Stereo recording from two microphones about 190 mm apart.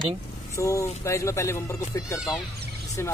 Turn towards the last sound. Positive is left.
turn(degrees=15)  # may be behind; listen again after turning